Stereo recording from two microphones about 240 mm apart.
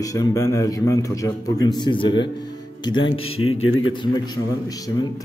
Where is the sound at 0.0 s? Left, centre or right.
Centre.